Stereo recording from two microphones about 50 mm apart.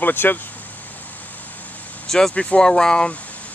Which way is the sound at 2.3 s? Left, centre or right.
Left.